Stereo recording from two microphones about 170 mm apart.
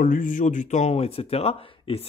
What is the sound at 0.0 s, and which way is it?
Speech, 55° left (ahead or behind).